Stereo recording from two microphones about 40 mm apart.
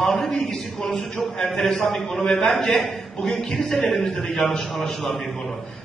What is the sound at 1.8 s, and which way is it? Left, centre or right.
A man's voice, centre.